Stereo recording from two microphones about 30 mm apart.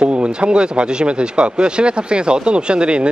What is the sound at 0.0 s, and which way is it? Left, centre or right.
Speech, right.